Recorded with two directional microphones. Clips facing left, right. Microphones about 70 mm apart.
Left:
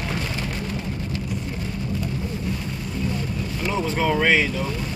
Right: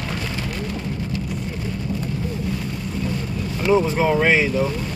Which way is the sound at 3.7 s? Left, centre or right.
Centre.